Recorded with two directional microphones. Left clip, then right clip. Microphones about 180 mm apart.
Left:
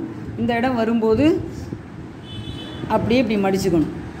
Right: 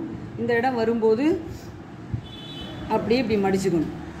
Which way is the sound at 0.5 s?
40° left (ahead or behind).